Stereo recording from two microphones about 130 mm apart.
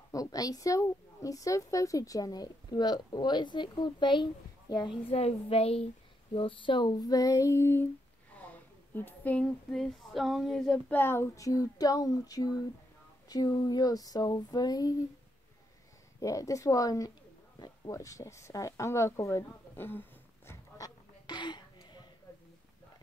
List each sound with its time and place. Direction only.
0.1 s a woman's voice: 25° left (ahead or behind)
5.1 s a woman's voice: 50° left (ahead or behind); by 11.0 s 5° left (ahead or behind)
11.0 s a woman's voice: 20° left (ahead or behind)
16.2 s a woman's voice: 25° left (ahead or behind)
17.6 s a sound: 25° left (ahead or behind)